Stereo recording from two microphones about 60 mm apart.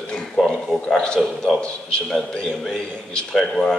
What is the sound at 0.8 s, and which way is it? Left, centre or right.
A man's voice, centre.